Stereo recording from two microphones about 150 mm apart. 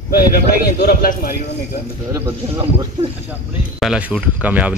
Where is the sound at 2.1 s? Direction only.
20° right (ahead or behind).